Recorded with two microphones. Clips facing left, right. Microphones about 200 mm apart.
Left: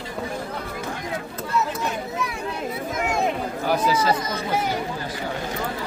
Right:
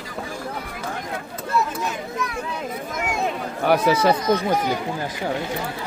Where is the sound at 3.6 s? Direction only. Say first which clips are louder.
Right 4 dB; 65° right (ahead or behind).